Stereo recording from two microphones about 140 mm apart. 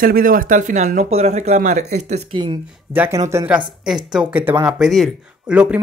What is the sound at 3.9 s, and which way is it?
Speech, 5° right (ahead or behind).